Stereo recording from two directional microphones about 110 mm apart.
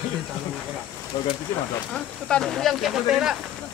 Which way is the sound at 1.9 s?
5° left (ahead or behind).